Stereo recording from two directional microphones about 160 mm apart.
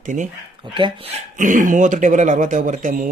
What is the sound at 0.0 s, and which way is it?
Speech, 50° right (ahead or behind).